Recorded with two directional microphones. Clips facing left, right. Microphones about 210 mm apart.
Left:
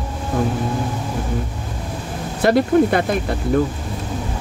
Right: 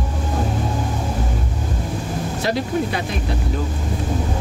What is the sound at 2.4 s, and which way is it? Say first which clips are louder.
Speech: left 9 dB; 55° left (ahead or behind).